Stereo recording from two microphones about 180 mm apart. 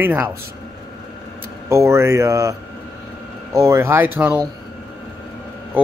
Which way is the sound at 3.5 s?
15° right (ahead or behind).